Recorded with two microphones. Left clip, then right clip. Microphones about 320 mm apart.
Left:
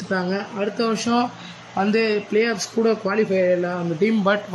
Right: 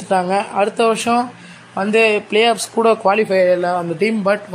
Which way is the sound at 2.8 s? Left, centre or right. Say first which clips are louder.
Right 5 dB; right.